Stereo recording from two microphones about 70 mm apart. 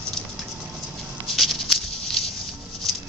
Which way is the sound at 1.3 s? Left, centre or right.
Centre.